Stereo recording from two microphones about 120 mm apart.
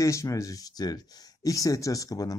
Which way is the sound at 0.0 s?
25° left (ahead or behind).